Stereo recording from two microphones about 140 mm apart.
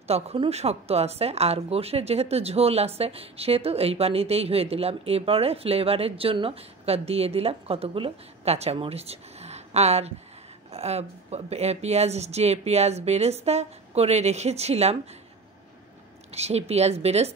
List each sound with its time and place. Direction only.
0.0 s speech: 45° right (ahead or behind)
16.3 s speech: 50° right (ahead or behind)